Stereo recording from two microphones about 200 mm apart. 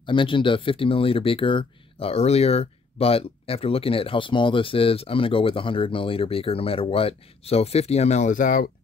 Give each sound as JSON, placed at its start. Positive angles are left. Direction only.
{"t": 0.0, "sound": "speech", "side_deg": 25}